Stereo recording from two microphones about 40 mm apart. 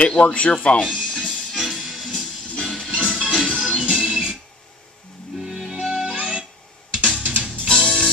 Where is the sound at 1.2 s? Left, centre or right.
Right.